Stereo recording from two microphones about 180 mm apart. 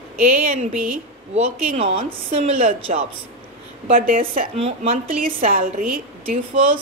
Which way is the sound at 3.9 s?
50° right (ahead or behind).